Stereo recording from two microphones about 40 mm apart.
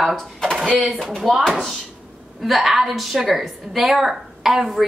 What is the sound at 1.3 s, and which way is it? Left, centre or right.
Speech, centre.